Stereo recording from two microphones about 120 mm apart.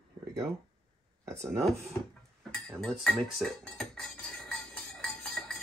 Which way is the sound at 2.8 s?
5° left (ahead or behind).